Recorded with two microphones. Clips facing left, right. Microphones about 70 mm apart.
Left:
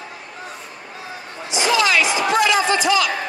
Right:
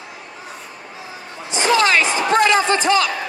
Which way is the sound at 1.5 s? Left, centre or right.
Right.